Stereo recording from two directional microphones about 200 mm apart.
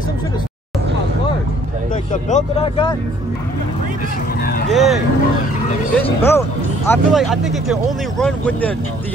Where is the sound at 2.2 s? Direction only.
35° left (ahead or behind).